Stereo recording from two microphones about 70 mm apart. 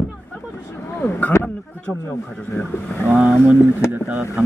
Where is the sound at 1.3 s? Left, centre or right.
Left.